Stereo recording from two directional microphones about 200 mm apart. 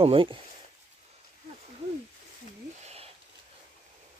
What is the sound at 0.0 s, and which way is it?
Speech, 25° right (ahead or behind).